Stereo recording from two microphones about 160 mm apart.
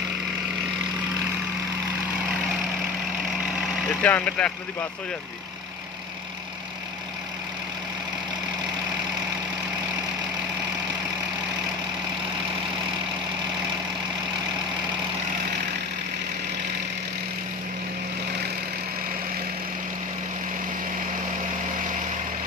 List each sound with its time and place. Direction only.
4.0 s speech: 10° left (ahead or behind)